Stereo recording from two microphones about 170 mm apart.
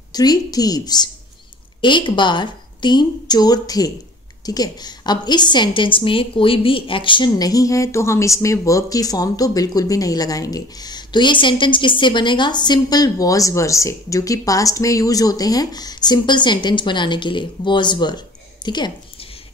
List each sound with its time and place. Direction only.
0.1 s a woman's voice: 25° left (ahead or behind)